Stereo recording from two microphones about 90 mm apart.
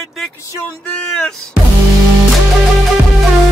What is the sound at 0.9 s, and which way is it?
Music, 5° left (ahead or behind).